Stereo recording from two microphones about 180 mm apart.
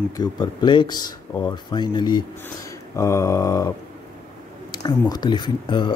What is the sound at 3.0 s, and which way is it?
Mantra, 15° left (ahead or behind).